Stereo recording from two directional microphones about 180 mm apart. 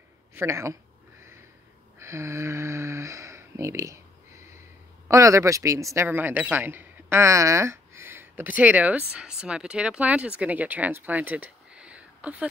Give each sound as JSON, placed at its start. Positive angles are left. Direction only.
{"t": 0.3, "sound": "speech", "side_deg": -10}
{"t": 2.0, "sound": "speech", "side_deg": -15}